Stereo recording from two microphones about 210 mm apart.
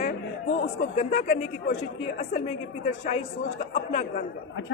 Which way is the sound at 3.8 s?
35° left (ahead or behind).